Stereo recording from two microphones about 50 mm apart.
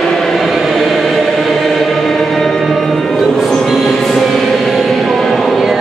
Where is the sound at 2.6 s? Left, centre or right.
Centre.